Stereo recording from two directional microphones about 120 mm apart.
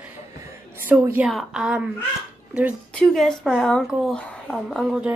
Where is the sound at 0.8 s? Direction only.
15° right (ahead or behind).